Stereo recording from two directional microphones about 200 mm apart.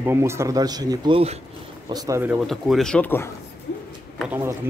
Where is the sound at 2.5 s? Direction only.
Centre (ahead or behind).